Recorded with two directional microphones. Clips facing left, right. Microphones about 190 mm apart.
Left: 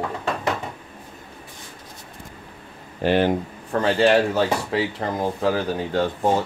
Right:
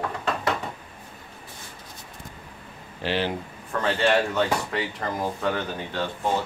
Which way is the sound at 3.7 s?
35° left (ahead or behind).